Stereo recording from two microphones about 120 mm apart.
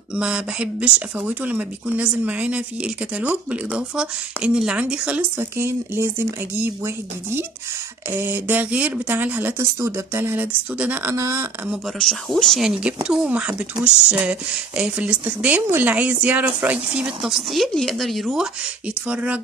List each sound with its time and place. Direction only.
0.1 s speech: 5° right (ahead or behind)
5.4 s speech: 20° right (ahead or behind)
8.1 s speech: 15° right (ahead or behind)
12.0 s speech: 5° left (ahead or behind)
19.0 s speech: 10° right (ahead or behind)